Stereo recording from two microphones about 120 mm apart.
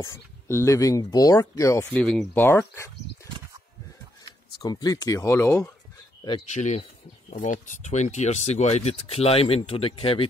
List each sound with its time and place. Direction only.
0.0 s speech: 25° left (ahead or behind)
2.0 s speech: 5° left (ahead or behind)
2.3 s speech: 20° left (ahead or behind)
4.6 s speech: 30° left (ahead or behind)
6.5 s speech: 75° left (ahead or behind)
7.2 s speech: 90° left; by 10.2 s 50° left (ahead or behind)